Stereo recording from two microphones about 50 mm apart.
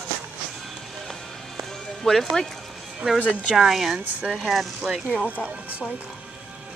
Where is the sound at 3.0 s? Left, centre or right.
Right.